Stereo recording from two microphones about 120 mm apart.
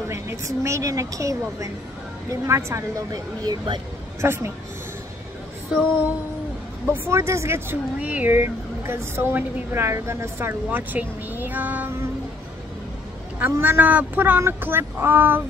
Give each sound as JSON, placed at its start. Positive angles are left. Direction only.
{"t": 0.1, "sound": "speech", "side_deg": -25}
{"t": 3.4, "sound": "speech", "side_deg": -40}
{"t": 4.2, "sound": "speech", "side_deg": -20}
{"t": 6.9, "sound": "speech", "side_deg": -20}
{"t": 13.4, "sound": "speech", "side_deg": -15}